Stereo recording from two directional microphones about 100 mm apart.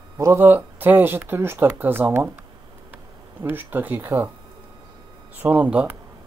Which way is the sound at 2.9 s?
20° right (ahead or behind).